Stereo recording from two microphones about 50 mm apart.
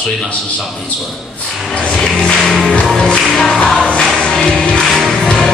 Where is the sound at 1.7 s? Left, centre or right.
Centre.